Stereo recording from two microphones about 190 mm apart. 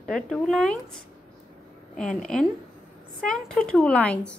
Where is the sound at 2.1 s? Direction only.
Centre (ahead or behind).